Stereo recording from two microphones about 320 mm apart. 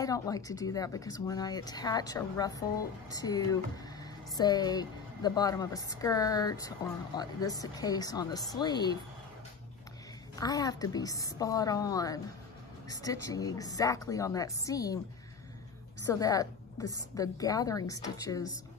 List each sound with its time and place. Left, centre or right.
0.0 s speech: centre
10.3 s speech: centre
16.1 s speech: centre